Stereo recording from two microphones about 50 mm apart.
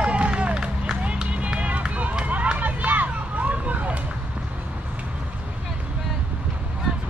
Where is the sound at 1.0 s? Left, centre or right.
Right.